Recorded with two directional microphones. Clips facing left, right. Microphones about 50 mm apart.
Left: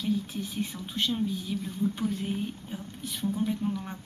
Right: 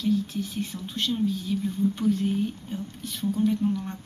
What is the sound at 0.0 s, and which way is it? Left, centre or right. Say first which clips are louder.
Speech: right 4 dB; centre.